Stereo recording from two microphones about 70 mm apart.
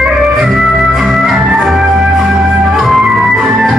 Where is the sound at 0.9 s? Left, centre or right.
Centre.